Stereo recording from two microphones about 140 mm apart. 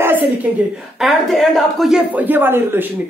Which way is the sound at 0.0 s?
15° right (ahead or behind).